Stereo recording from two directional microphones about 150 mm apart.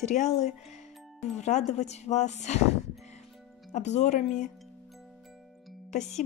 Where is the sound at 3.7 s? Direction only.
50° left (ahead or behind).